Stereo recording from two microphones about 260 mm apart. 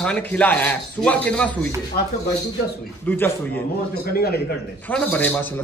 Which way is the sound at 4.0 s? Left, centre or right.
Left.